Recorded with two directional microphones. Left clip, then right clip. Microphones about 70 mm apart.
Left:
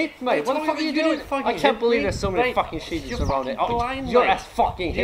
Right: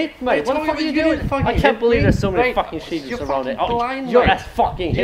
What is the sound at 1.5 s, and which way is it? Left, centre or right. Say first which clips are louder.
Speech: right 4 dB; centre.